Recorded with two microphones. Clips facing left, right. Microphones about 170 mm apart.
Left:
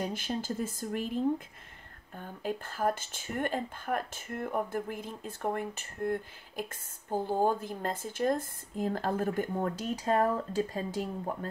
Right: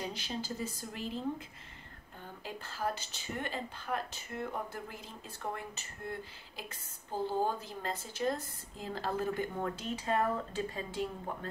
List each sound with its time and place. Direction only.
0.0 s speech: 50° left (ahead or behind)